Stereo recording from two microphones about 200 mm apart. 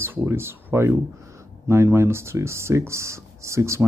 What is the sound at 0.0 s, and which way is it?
Speech, 10° right (ahead or behind).